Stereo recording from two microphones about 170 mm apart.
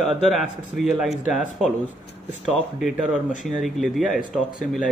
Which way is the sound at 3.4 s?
Centre (ahead or behind).